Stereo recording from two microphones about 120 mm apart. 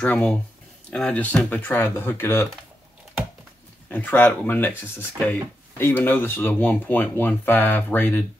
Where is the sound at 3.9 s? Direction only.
15° left (ahead or behind).